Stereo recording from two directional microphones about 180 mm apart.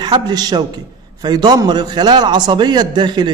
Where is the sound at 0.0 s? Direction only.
25° right (ahead or behind).